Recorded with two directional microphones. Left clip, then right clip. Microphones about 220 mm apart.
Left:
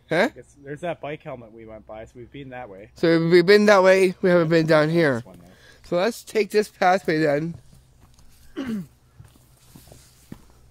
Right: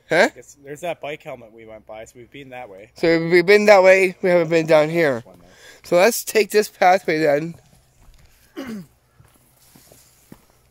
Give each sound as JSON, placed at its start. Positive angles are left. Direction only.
{"t": 0.1, "sound": "speech", "side_deg": -20}
{"t": 0.4, "sound": "speech", "side_deg": -35}
{"t": 3.0, "sound": "speech", "side_deg": -10}
{"t": 5.5, "sound": "speech", "side_deg": -25}
{"t": 5.9, "sound": "speech", "side_deg": -50}
{"t": 6.4, "sound": "speech", "side_deg": -30}
{"t": 6.8, "sound": "speech", "side_deg": -15}
{"t": 8.5, "sound": "speech", "side_deg": -25}
{"t": 10.3, "sound": "walk", "side_deg": -5}